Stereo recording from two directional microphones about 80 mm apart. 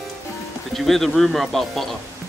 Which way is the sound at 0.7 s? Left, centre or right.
Centre.